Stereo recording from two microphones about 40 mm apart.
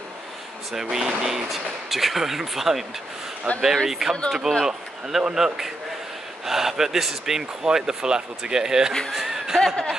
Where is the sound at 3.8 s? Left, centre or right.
Centre.